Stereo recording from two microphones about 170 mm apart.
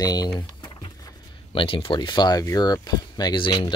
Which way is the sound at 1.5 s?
30° left (ahead or behind).